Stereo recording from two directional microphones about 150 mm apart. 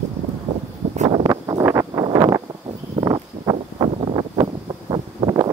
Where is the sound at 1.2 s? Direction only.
25° right (ahead or behind).